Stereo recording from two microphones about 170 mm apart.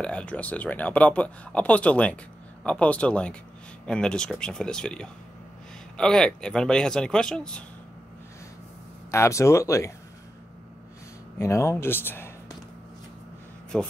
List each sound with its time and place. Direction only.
0.0 s speech: 10° left (ahead or behind)
9.1 s speech: 15° left (ahead or behind)
11.3 s speech: 15° left (ahead or behind)
13.7 s speech: 5° left (ahead or behind)